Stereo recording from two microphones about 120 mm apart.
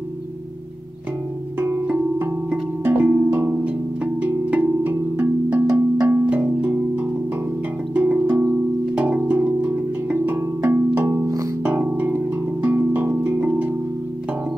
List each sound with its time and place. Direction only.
1.6 s music: 20° right (ahead or behind)
11.6 s music: 15° right (ahead or behind)